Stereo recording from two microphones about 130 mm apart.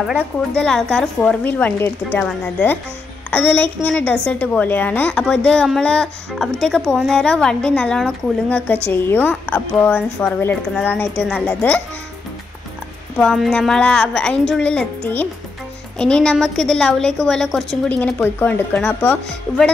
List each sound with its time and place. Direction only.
0.6 s a woman's voice: 5° left (ahead or behind)
13.2 s a woman's voice: 5° left (ahead or behind)